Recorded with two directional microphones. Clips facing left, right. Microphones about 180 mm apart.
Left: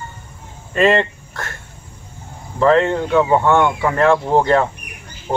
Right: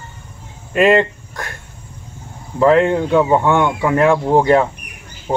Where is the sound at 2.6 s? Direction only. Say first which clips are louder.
Right 2 dB; 10° right (ahead or behind).